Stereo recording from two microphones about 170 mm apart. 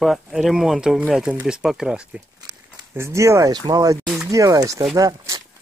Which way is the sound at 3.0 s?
15° right (ahead or behind).